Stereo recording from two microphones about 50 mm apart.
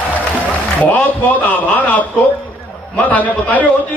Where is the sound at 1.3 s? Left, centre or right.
Left.